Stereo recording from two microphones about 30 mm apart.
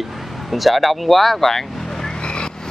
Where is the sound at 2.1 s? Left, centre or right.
Left.